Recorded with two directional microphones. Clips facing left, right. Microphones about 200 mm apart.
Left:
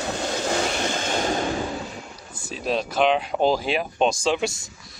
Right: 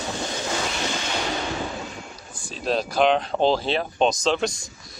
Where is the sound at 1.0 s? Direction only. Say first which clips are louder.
Left 4 dB; 45° left (ahead or behind).